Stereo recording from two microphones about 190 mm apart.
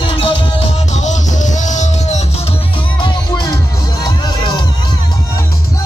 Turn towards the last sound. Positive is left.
turn(degrees=20)  # may be behind; listen again after turning